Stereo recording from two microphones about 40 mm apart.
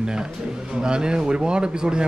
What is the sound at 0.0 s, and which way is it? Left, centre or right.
A man's voice, right.